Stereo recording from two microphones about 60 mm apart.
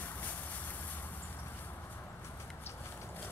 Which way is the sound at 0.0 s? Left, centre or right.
Left.